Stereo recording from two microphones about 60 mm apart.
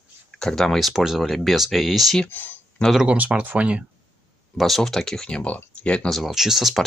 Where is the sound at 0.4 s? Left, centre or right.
Centre.